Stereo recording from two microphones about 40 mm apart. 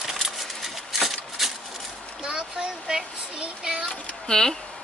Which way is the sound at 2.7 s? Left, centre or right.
Centre.